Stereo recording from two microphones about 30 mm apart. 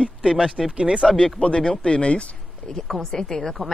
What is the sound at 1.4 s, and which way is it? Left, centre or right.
Speech, left.